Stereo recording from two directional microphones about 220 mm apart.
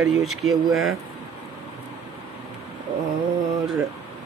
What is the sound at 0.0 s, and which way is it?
Speech, centre (ahead or behind).